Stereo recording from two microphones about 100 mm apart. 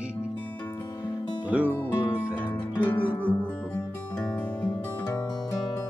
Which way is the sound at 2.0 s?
15° right (ahead or behind).